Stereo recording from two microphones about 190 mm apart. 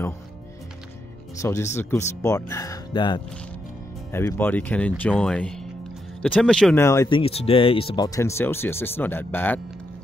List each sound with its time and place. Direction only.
1.4 s speech: 15° left (ahead or behind)